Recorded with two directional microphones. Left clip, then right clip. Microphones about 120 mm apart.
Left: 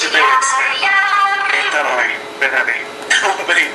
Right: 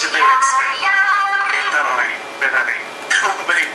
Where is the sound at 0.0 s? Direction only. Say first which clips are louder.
Left 1 dB; 20° left (ahead or behind).